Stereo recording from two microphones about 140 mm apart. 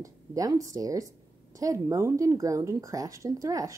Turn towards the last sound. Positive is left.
turn(degrees=-25)  # may be behind; listen again after turning